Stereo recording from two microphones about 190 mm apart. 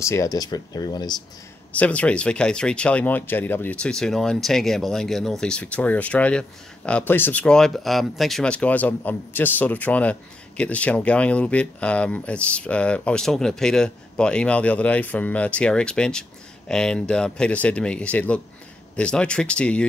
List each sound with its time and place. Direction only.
0.0 s speech: 15° left (ahead or behind)
1.8 s speech: 5° left (ahead or behind)